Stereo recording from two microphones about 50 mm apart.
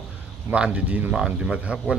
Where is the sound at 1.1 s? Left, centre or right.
Centre.